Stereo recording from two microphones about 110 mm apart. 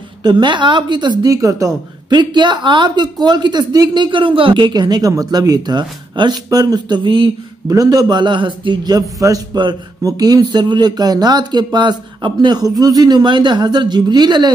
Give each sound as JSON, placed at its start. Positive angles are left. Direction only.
{"t": 0.2, "sound": "speech", "side_deg": -45}
{"t": 1.3, "sound": "a woman's voice", "side_deg": -30}
{"t": 2.0, "sound": "speech", "side_deg": -45}
{"t": 7.6, "sound": "speech", "side_deg": -30}